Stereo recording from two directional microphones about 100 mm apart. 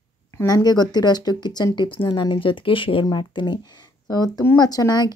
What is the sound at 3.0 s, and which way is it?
Speech, 45° left (ahead or behind).